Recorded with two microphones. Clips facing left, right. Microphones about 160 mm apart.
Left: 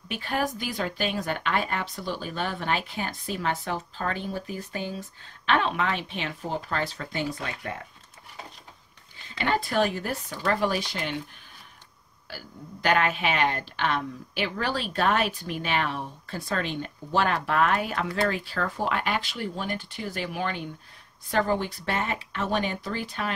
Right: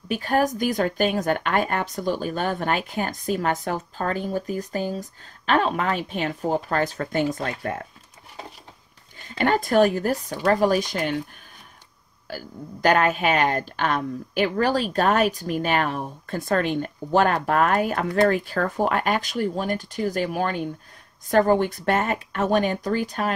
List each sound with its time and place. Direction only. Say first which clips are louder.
0.1 s a woman's voice: right 7 dB; 40° right (ahead or behind)
9.4 s a woman's voice: right 6 dB; 45° right (ahead or behind)
12.3 s a woman's voice: right 7 dB; 45° right (ahead or behind)